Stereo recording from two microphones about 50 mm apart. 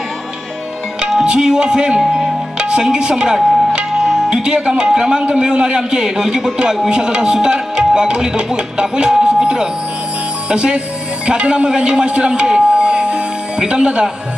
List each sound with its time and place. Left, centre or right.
1.2 s a man's voice: centre
2.1 s music: centre
4.0 s music: centre
4.3 s a man's voice: centre
7.3 s music: centre
10.5 s a man's voice: centre